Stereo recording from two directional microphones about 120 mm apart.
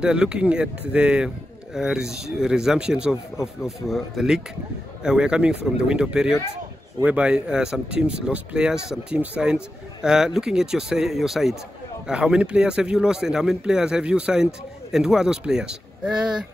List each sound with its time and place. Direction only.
0.0 s a man's voice: 10° right (ahead or behind)